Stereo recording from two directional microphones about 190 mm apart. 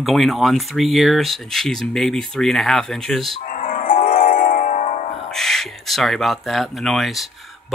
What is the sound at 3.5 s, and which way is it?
Music, 45° left (ahead or behind).